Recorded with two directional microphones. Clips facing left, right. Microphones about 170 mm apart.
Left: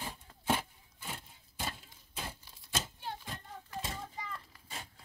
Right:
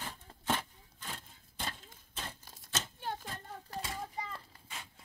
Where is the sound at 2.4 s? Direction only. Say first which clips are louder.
Right 3 dB; 45° right (ahead or behind).